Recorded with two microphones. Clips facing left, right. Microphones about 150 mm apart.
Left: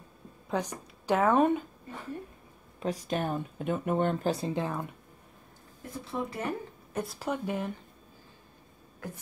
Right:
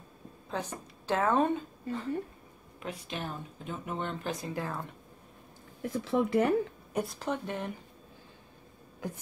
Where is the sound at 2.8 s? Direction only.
40° left (ahead or behind).